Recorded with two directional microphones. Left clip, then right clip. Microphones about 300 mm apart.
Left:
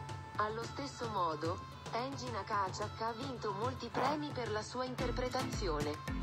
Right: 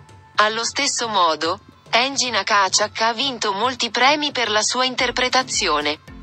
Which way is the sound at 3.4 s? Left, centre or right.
Right.